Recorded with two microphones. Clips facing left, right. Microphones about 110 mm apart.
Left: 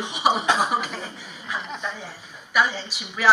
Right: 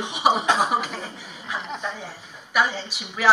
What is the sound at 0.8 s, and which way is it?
Speech, 35° right (ahead or behind).